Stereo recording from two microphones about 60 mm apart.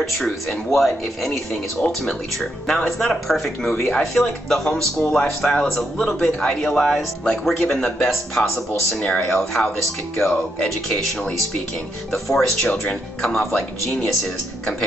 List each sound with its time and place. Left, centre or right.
0.0 s a man's voice: centre
10.3 s a man's voice: centre